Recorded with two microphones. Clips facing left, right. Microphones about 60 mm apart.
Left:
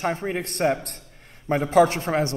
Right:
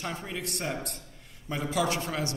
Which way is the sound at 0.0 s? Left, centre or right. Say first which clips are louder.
Left 9 dB; left.